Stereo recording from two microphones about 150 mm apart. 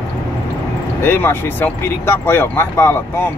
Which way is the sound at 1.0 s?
15° left (ahead or behind).